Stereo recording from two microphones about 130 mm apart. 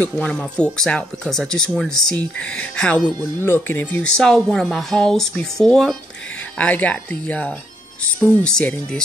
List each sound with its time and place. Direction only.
0.0 s speech: 10° left (ahead or behind)
3.4 s speech: 15° left (ahead or behind)
4.2 s speech: 5° left (ahead or behind)